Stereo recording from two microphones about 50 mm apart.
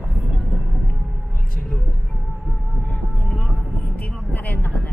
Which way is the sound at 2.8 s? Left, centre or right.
Left.